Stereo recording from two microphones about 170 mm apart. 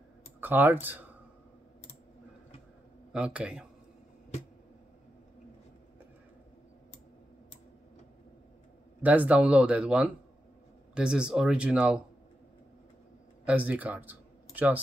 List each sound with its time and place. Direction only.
0.4 s speech: 10° right (ahead or behind)
3.1 s speech: 5° right (ahead or behind)
9.0 s speech: 10° right (ahead or behind)
13.5 s speech: 10° right (ahead or behind)